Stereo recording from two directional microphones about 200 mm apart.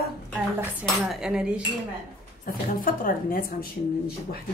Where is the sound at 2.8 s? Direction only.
45° left (ahead or behind).